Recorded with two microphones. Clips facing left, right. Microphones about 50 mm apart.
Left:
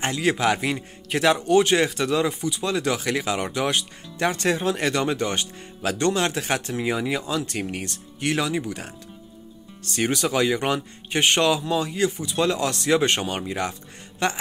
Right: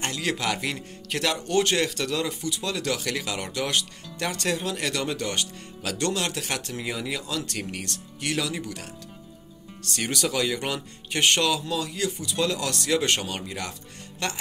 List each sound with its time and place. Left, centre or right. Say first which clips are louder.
0.0 s speech: left 6 dB; left
9.9 s speech: left 4 dB; left